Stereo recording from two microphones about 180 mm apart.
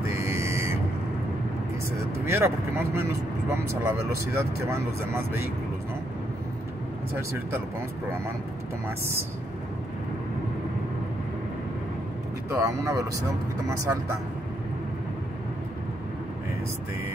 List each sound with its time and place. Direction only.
0.0 s a sound: 15° right (ahead or behind)
2.2 s speech: 15° right (ahead or behind)
12.4 s speech: 15° right (ahead or behind)